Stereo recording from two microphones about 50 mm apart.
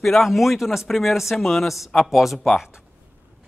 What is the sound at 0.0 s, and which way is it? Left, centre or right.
Speech, centre.